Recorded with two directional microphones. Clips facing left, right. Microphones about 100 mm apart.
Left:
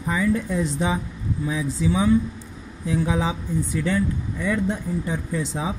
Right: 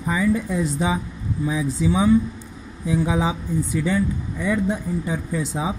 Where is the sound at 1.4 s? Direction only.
20° right (ahead or behind).